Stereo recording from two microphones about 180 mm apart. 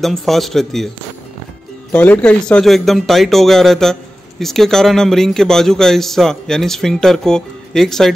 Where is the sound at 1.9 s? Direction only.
10° left (ahead or behind).